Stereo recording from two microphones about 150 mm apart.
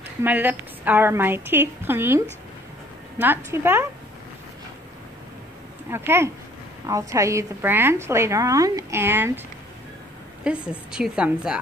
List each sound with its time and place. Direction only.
0.2 s a woman's voice: 10° right (ahead or behind)
5.9 s a woman's voice: 15° right (ahead or behind)
10.4 s a woman's voice: 5° right (ahead or behind)